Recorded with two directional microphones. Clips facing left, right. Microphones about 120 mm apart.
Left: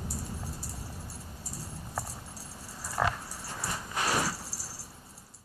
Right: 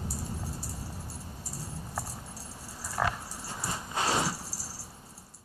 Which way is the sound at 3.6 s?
25° right (ahead or behind).